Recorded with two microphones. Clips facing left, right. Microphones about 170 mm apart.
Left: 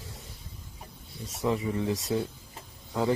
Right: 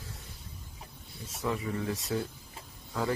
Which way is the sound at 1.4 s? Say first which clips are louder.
Left 4 dB; 20° left (ahead or behind).